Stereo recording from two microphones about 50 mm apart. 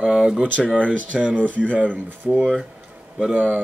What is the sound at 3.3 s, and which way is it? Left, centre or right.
Speech, right.